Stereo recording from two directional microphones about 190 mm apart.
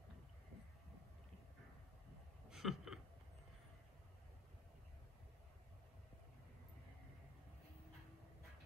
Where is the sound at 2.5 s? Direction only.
Centre (ahead or behind).